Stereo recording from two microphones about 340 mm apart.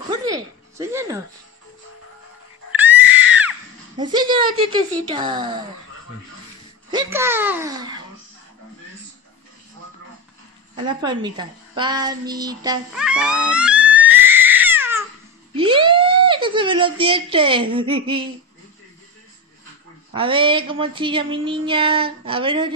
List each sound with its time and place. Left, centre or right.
0.1 s a sound: centre
2.7 s a sound: centre
4.0 s speech: centre
6.9 s speech: centre
10.9 s child singing: centre
15.5 s speech: centre
20.1 s speech: centre